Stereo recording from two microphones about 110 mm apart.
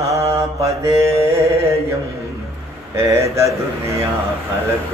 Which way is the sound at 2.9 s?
25° right (ahead or behind).